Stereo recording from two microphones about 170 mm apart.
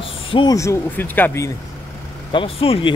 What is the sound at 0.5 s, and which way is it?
Speech, 15° left (ahead or behind).